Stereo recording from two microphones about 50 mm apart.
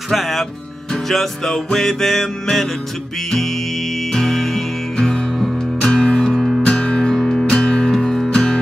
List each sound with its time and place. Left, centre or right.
0.1 s music: centre
4.1 s music: centre
6.3 s music: centre
6.6 s music: centre